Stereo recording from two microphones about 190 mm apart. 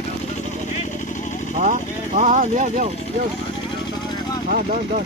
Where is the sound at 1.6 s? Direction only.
40° right (ahead or behind).